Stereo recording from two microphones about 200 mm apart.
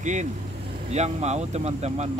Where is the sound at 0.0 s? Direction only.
35° right (ahead or behind).